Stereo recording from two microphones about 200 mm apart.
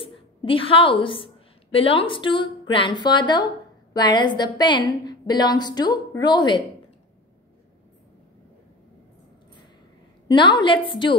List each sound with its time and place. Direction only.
0.0 s a woman's voice: 25° left (ahead or behind)
10.2 s a woman's voice: 25° left (ahead or behind)